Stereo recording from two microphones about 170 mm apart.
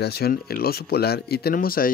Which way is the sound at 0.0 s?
65° left (ahead or behind).